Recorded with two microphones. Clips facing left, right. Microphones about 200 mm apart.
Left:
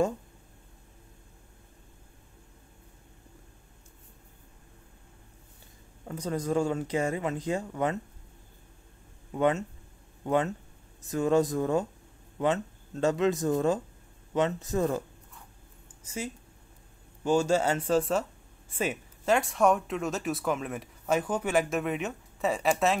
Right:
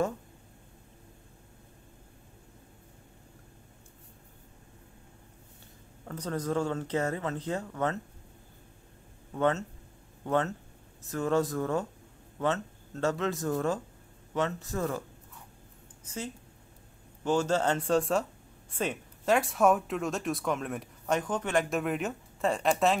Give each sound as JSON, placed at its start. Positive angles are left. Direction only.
{"t": 6.0, "sound": "speech", "side_deg": 10}
{"t": 9.3, "sound": "speech", "side_deg": 15}